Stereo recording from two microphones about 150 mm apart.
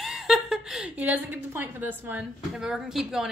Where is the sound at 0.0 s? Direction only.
Centre (ahead or behind).